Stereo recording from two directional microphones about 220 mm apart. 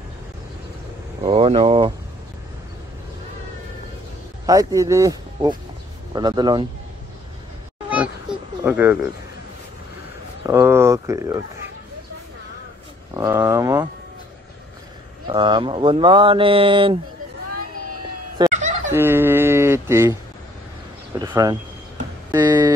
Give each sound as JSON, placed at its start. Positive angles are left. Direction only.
{"t": 1.2, "sound": "speech", "side_deg": -25}
{"t": 4.5, "sound": "speech", "side_deg": -15}
{"t": 8.6, "sound": "speech", "side_deg": -10}
{"t": 10.4, "sound": "speech", "side_deg": -10}
{"t": 13.1, "sound": "speech", "side_deg": -15}
{"t": 15.2, "sound": "speech", "side_deg": -20}
{"t": 18.4, "sound": "fowl", "side_deg": -20}
{"t": 18.9, "sound": "a sound", "side_deg": -10}
{"t": 21.2, "sound": "speech", "side_deg": -15}